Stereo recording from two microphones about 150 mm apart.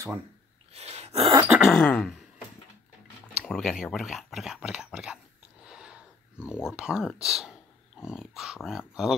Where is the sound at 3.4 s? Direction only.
Centre (ahead or behind).